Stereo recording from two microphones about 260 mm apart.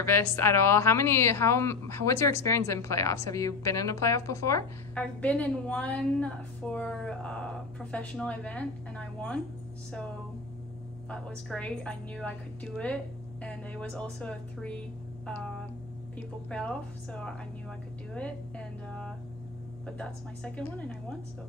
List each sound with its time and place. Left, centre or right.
0.0 s a woman's voice: centre
11.1 s a woman's voice: centre